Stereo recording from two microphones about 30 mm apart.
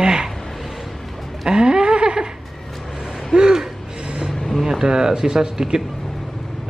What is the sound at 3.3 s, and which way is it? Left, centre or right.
Gasp, right.